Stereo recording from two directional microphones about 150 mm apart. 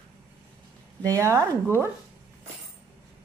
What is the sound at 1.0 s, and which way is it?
Speech, 20° right (ahead or behind).